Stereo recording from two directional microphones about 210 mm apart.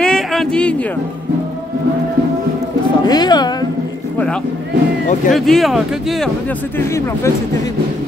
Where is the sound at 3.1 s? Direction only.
20° left (ahead or behind).